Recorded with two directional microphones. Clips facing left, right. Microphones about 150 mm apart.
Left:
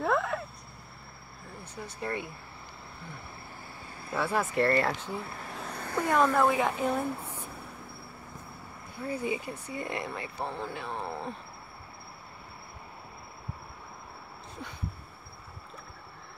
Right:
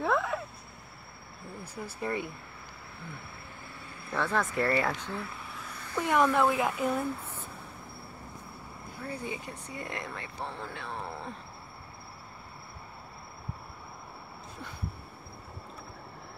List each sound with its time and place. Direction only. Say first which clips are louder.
0.0 s a sound: even; centre (ahead or behind)
1.6 s speech: right 1 dB; 5° right (ahead or behind)
4.1 s speech: left 1 dB; 10° left (ahead or behind)
5.6 s vehicle: left 2 dB; 50° left (ahead or behind)
6.1 s speech: even; centre (ahead or behind)
7.0 s a sound: left 1 dB; 15° left (ahead or behind)
9.1 s speech: left 6 dB; 5° left (ahead or behind)